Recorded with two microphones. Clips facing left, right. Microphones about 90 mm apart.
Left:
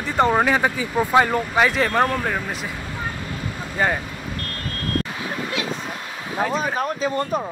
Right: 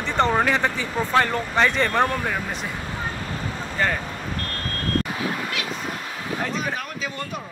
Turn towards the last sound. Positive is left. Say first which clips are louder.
# left 8 dB
turn(degrees=35)  # may be behind; listen again after turning